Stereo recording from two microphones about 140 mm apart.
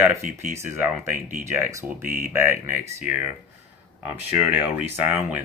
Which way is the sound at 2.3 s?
20° right (ahead or behind).